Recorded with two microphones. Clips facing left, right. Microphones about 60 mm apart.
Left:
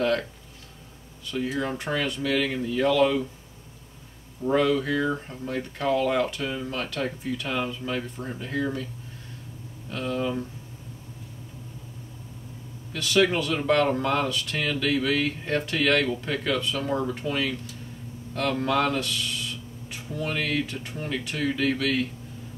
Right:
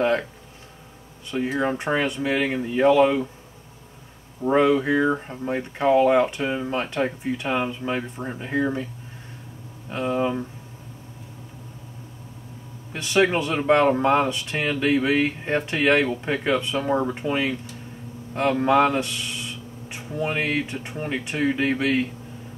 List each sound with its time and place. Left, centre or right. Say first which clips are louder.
1.3 s speech: right 4 dB; right
4.4 s speech: right 4 dB; right
9.8 s speech: right 4 dB; right
12.9 s speech: right 2 dB; right